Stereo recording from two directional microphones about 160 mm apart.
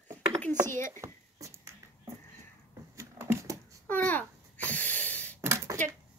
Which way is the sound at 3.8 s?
10° left (ahead or behind).